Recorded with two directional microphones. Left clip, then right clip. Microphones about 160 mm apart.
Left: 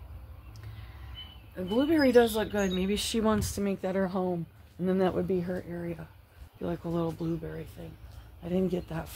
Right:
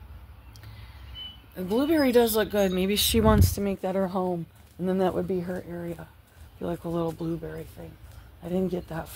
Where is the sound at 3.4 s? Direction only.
15° right (ahead or behind).